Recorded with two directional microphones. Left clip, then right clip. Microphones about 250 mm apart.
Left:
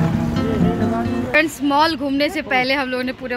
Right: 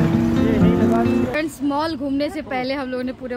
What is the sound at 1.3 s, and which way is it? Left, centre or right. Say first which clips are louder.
Speech: left 6 dB; centre.